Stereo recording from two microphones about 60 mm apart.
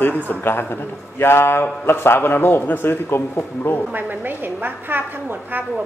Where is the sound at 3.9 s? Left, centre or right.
Right.